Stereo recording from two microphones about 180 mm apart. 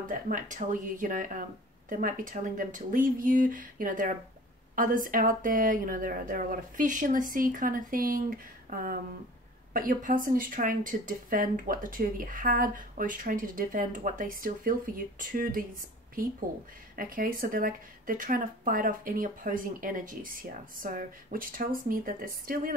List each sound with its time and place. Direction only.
0.1 s a woman's voice: 45° right (ahead or behind)
16.9 s a woman's voice: 50° right (ahead or behind)